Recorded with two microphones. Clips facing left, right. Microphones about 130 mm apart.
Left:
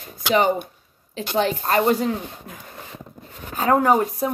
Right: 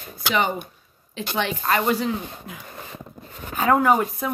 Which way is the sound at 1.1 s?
40° left (ahead or behind).